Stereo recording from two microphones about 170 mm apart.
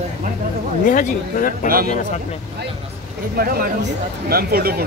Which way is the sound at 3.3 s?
60° right (ahead or behind).